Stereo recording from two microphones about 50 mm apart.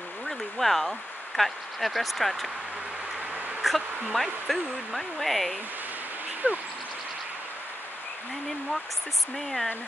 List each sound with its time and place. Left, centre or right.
0.3 s speech: centre
3.6 s speech: centre
6.4 s speech: right